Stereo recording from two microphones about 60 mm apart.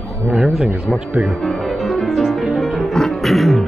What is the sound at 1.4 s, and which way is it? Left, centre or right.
Music, centre.